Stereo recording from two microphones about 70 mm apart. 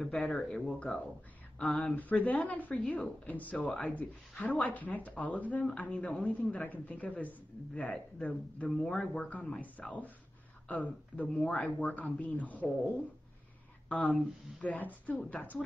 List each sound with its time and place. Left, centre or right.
0.0 s speech: centre
2.0 s speech: left
8.6 s speech: centre
11.3 s speech: centre
11.8 s speech: left
13.8 s speech: centre